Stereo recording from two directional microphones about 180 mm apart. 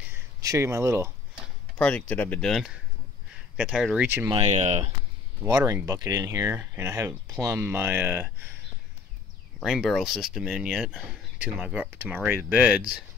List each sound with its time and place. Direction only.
0.4 s speech: 15° right (ahead or behind)
1.8 s speech: 5° left (ahead or behind); by 4.3 s 10° right (ahead or behind)
4.3 s speech: 35° right (ahead or behind)
5.4 s speech: 15° right (ahead or behind)
9.6 s speech: centre (ahead or behind)